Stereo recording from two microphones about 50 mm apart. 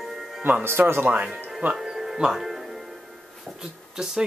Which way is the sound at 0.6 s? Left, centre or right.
Right.